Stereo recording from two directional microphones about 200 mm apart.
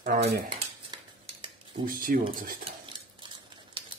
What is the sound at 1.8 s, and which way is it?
Speech, 45° right (ahead or behind).